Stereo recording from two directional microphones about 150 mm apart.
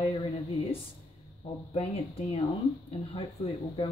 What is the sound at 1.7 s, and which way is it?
Speech, 45° left (ahead or behind).